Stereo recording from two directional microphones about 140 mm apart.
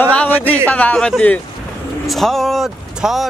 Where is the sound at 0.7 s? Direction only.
10° left (ahead or behind).